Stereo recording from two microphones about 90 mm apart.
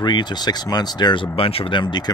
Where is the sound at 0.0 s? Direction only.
55° left (ahead or behind).